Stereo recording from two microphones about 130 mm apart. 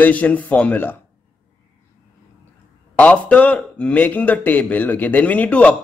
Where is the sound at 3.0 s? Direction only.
10° left (ahead or behind).